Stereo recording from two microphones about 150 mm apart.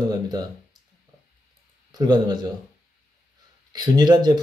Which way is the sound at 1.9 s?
25° right (ahead or behind).